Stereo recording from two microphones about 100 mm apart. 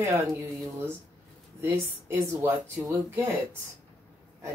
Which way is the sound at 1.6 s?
25° right (ahead or behind).